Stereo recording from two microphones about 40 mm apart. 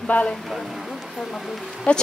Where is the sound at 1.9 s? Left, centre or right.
Left.